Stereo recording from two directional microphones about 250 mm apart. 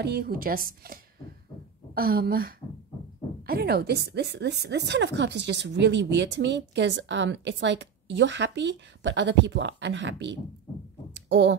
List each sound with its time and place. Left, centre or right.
0.0 s speech: right
2.0 s speech: right